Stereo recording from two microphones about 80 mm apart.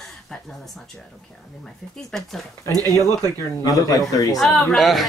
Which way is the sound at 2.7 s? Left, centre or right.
Right.